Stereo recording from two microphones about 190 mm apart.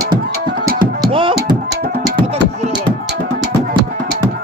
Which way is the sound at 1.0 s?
25° right (ahead or behind).